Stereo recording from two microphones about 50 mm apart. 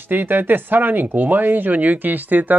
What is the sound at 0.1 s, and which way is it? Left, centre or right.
Speech, right.